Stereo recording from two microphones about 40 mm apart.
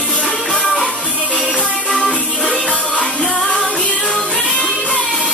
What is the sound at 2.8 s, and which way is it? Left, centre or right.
Music, left.